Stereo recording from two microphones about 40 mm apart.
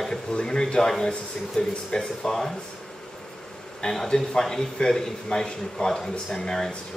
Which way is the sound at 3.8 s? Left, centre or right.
Centre.